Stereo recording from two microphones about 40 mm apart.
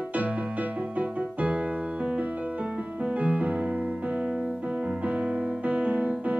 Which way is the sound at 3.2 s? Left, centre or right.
Right.